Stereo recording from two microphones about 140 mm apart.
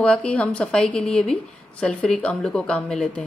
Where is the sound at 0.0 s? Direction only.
5° left (ahead or behind).